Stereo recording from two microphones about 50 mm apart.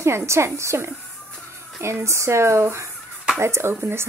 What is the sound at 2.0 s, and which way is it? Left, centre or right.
A woman's voice, right.